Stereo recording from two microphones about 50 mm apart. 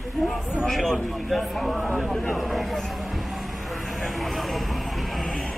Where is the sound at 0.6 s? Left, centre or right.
Centre.